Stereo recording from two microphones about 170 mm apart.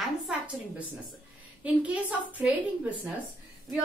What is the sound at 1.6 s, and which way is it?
Speech, 10° right (ahead or behind).